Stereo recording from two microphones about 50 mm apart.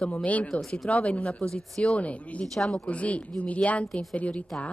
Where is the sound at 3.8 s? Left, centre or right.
Centre.